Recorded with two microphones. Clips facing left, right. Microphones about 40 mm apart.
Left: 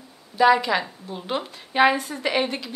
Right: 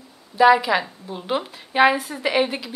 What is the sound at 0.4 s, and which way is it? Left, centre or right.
A woman's voice, centre.